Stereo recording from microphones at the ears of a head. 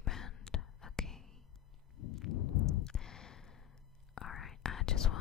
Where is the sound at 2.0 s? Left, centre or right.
Left.